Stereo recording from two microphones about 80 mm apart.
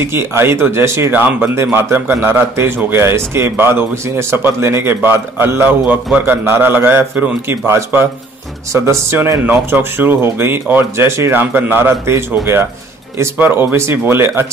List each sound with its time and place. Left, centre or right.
0.0 s a man's voice: right
13.4 s speech: right